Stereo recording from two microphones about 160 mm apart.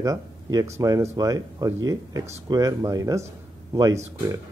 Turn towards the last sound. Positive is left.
turn(degrees=-20)  # may be behind; listen again after turning